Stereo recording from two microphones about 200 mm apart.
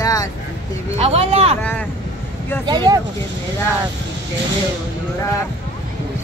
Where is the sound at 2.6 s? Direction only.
20° right (ahead or behind).